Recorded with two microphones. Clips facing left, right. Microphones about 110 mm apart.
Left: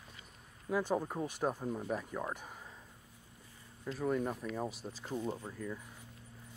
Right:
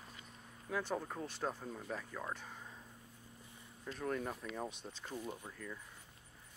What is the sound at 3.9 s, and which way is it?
Speech, 5° left (ahead or behind).